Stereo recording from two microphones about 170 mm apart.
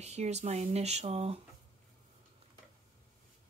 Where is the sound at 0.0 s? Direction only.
40° right (ahead or behind).